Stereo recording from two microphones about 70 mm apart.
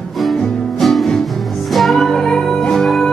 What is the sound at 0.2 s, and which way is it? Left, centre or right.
Music, centre.